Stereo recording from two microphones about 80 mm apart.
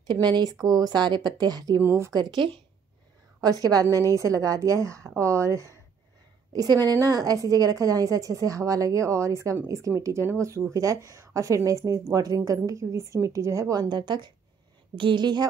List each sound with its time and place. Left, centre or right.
0.0 s speech: right
0.6 s speech: right
1.8 s speech: right
2.1 s speech: right
3.3 s a woman's voice: right
6.5 s a woman's voice: right
15.0 s a woman's voice: right